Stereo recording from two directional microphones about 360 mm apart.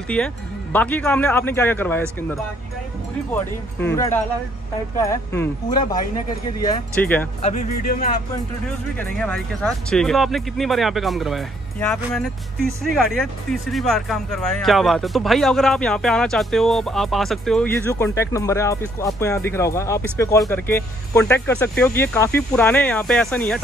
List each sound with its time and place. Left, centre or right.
0.1 s speech: centre
3.8 s speech: centre
7.4 s speech: left
8.9 s speech: centre